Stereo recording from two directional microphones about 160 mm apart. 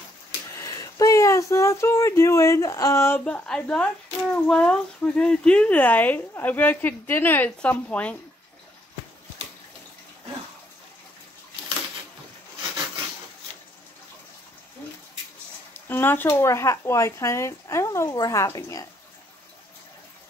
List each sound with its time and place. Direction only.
0.5 s speech: 20° left (ahead or behind)
15.7 s speech: 15° left (ahead or behind)